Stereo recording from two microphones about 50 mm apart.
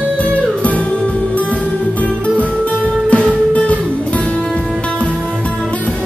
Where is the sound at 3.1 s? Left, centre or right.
Left.